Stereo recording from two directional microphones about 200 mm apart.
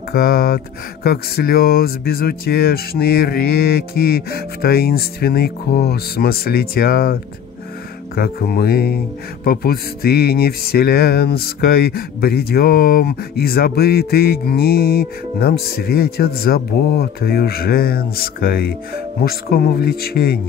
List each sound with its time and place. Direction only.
0.1 s speech: 50° left (ahead or behind)
8.2 s speech: 50° left (ahead or behind)